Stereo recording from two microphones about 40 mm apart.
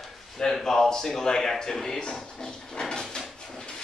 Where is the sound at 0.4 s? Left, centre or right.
Centre.